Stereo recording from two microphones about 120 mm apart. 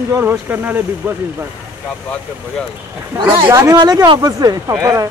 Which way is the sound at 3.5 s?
30° right (ahead or behind).